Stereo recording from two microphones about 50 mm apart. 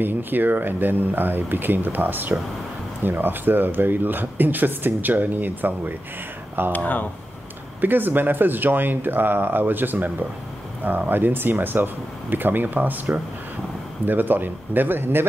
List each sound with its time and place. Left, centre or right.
0.0 s speech: right
7.8 s speech: right